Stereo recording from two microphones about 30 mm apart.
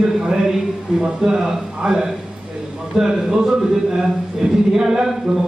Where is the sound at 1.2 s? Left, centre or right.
Right.